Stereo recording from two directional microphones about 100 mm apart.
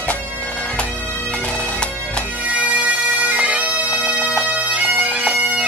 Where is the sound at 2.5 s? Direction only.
15° right (ahead or behind).